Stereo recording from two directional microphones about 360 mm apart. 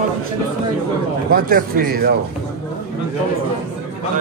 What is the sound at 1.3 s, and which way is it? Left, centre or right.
Speech, right.